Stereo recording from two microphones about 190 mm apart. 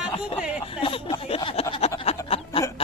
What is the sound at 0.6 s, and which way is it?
Speech, 30° left (ahead or behind).